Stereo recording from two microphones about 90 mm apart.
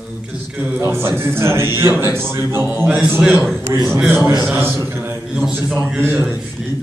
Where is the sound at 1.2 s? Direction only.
30° right (ahead or behind).